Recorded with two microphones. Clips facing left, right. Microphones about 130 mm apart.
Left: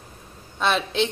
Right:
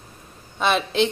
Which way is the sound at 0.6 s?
5° right (ahead or behind).